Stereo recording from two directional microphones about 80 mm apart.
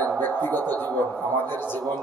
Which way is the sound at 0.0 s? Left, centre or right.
Left.